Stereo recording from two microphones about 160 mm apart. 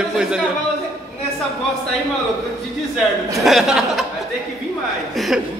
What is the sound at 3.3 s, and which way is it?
Speech, centre (ahead or behind).